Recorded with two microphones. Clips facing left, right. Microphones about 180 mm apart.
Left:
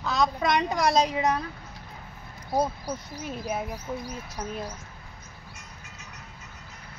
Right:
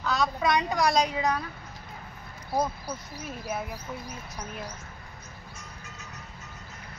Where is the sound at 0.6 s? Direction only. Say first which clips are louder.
Left 3 dB; 25° left (ahead or behind).